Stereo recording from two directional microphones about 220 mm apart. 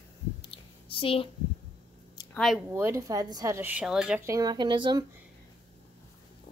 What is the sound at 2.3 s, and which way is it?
Speech, centre (ahead or behind).